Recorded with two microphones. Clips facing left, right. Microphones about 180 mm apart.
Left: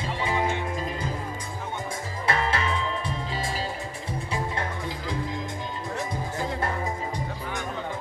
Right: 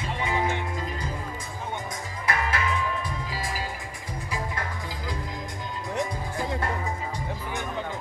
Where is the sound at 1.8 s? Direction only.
30° left (ahead or behind).